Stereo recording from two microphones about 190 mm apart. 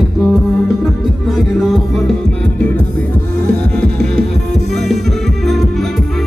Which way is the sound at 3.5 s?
5° left (ahead or behind).